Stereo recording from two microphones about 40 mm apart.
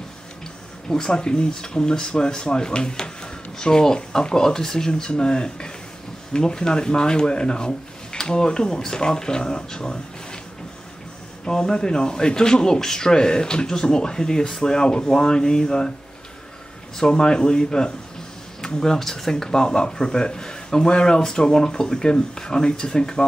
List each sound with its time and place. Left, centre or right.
0.8 s speech: centre
11.4 s speech: centre
16.9 s speech: centre